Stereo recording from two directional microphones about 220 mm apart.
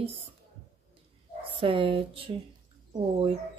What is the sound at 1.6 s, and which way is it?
Speech, 25° right (ahead or behind).